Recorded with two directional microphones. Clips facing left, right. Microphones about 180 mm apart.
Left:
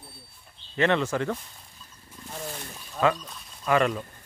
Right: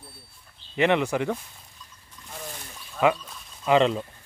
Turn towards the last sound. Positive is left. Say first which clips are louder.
# right 3 dB
turn(degrees=-20)  # may be behind; listen again after turning